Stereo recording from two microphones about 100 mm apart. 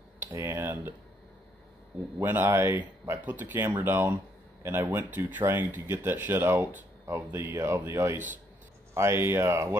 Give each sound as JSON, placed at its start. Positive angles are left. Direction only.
{"t": 0.2, "sound": "speech", "side_deg": -25}
{"t": 2.1, "sound": "speech", "side_deg": -20}